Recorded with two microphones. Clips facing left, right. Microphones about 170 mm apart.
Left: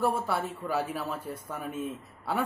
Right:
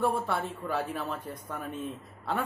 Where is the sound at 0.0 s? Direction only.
Centre (ahead or behind).